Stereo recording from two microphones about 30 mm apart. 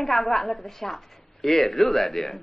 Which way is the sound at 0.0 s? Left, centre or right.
Centre.